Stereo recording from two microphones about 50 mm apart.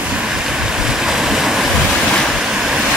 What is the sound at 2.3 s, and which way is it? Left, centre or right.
Waves, centre.